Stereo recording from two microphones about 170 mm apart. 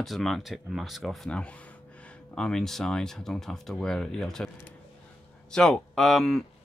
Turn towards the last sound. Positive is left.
turn(degrees=0)  # may be behind; listen again after turning